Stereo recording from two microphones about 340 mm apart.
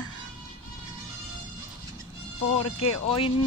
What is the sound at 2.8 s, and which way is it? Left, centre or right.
Speech, centre.